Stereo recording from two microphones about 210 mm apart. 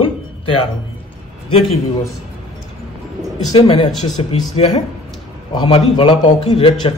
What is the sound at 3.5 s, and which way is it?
Speech, 25° left (ahead or behind).